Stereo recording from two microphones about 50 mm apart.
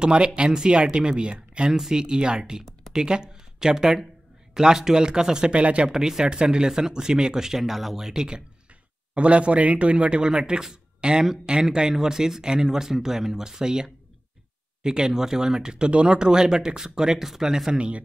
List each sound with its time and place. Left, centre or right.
0.0 s speech: centre
5.9 s speech: centre
9.1 s speech: right
17.7 s speech: right